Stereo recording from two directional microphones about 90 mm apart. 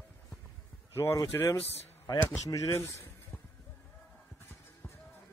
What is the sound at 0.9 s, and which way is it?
Speech, 30° left (ahead or behind).